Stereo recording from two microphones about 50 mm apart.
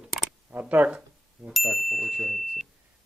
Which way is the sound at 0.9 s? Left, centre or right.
Centre.